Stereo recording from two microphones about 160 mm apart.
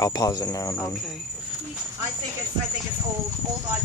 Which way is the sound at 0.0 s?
25° left (ahead or behind).